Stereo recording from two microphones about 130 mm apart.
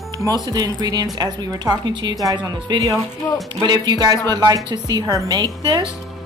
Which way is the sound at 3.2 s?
25° left (ahead or behind).